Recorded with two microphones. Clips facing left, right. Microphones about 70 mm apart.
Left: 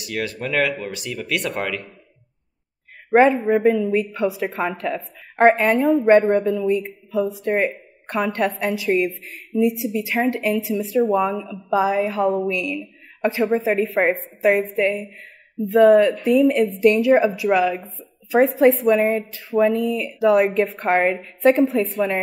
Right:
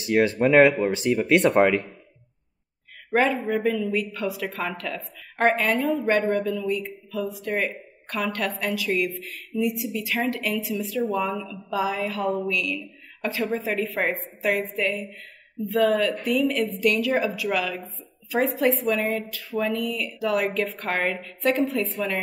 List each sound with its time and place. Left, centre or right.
0.0 s speech: right
3.3 s speech: centre
3.6 s a woman's voice: left